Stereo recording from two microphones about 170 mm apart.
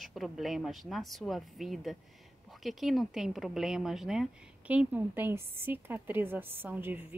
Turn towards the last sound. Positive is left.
turn(degrees=-10)  # may be behind; listen again after turning